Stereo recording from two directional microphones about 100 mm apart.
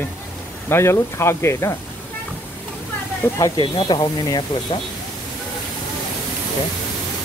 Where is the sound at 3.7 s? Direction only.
45° left (ahead or behind).